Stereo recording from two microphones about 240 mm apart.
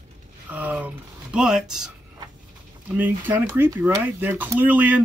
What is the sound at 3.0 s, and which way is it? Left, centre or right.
Speech, centre.